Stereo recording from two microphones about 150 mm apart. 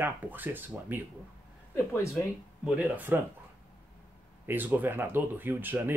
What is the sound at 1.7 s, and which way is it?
Speech, 20° left (ahead or behind).